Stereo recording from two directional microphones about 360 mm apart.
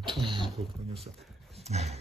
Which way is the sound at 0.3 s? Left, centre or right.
Centre.